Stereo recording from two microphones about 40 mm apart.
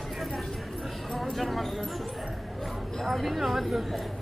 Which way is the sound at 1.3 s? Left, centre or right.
Centre.